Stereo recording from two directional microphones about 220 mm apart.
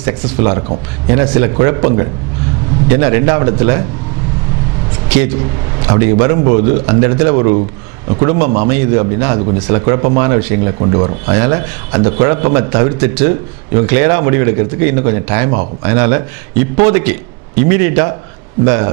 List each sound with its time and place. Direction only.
0.0 s a man's voice: 10° right (ahead or behind)
5.9 s a man's voice: 10° right (ahead or behind)